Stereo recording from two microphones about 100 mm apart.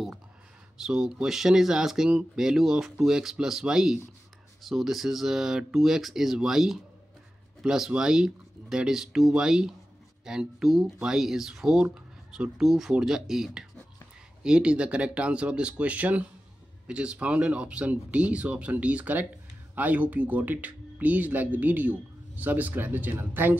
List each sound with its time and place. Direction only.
0.8 s speech: 5° right (ahead or behind)